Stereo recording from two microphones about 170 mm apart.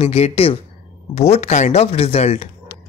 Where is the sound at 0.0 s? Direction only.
35° left (ahead or behind).